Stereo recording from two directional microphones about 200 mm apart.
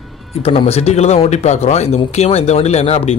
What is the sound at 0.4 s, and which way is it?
Speech, 30° left (ahead or behind).